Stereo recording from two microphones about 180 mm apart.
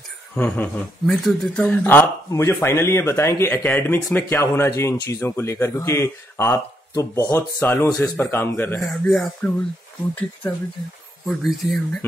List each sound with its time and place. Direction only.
0.4 s speech: 10° left (ahead or behind)
8.7 s speech: centre (ahead or behind)
11.2 s speech: centre (ahead or behind)